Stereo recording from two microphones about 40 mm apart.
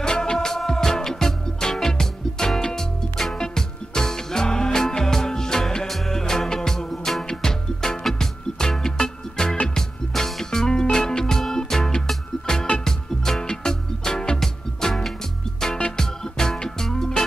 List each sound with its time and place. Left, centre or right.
0.0 s music: centre